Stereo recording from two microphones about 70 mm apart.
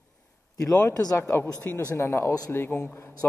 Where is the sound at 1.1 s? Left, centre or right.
Left.